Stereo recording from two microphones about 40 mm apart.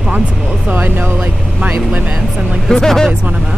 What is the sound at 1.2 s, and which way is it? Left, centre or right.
Speech, right.